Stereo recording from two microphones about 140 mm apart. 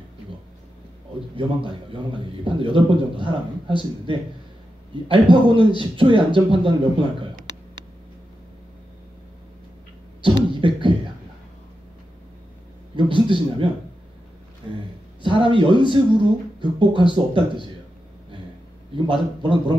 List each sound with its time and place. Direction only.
1.7 s a man's voice: 35° right (ahead or behind)
5.0 s a man's voice: 35° right (ahead or behind)
10.2 s beatboxing: 35° right (ahead or behind)
12.9 s a man's voice: 35° right (ahead or behind)
15.2 s a man's voice: 35° right (ahead or behind)
18.9 s a man's voice: 35° right (ahead or behind)